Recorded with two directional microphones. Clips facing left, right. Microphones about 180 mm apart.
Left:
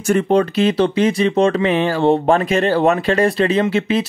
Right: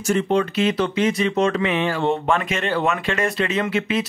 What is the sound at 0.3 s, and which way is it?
Speech, 35° left (ahead or behind).